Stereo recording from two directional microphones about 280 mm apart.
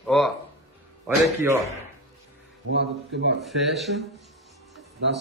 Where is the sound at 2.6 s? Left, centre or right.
Right.